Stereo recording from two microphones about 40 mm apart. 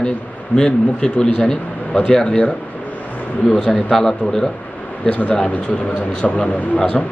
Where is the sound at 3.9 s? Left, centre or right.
Centre.